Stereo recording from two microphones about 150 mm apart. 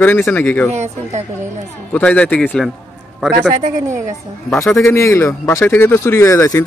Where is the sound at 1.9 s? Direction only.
10° left (ahead or behind).